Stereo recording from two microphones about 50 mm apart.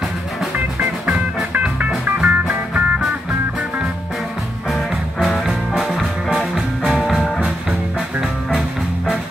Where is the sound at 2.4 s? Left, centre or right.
Centre.